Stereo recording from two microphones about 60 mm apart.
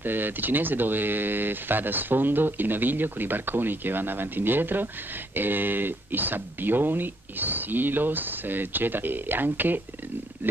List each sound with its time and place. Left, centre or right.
0.0 s speech: right